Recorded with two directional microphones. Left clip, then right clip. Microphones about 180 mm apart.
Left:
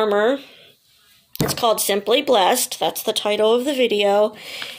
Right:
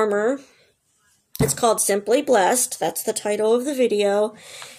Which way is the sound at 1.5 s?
40° left (ahead or behind).